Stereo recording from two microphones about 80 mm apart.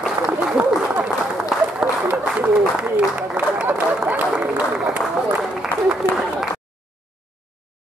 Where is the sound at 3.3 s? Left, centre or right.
Centre.